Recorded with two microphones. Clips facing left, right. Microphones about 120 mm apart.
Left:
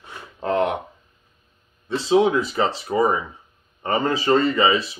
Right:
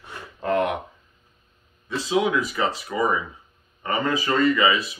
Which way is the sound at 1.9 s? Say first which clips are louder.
Left 5 dB; 30° left (ahead or behind).